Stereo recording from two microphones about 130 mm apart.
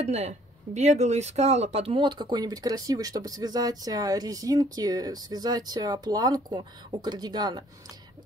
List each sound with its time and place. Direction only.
0.0 s speech: 55° right (ahead or behind); by 7.6 s 30° right (ahead or behind)